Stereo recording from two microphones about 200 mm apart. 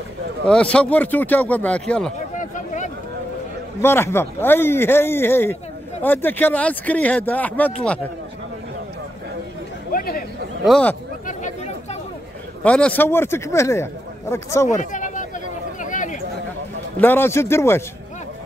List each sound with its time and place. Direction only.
0.5 s speech: 5° left (ahead or behind)
2.1 s a sound: 40° left (ahead or behind)
3.8 s speech: 10° left (ahead or behind)
9.9 s a sound: 45° left (ahead or behind)
10.6 s speech: 5° left (ahead or behind)
11.2 s chatter: 35° left (ahead or behind)
12.6 s speech: 5° left (ahead or behind)
14.7 s a sound: 40° left (ahead or behind)
17.0 s speech: 10° left (ahead or behind)